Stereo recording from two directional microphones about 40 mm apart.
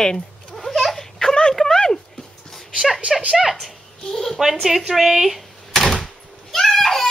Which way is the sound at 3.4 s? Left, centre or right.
Centre.